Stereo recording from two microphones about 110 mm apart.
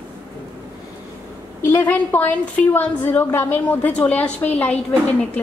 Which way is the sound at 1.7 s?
20° left (ahead or behind).